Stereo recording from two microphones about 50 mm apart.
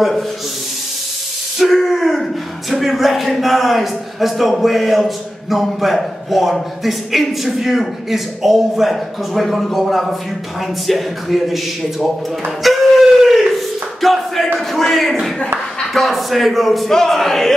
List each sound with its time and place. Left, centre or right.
1.6 s a man's voice: centre
12.6 s a sound: centre
15.8 s a man's voice: centre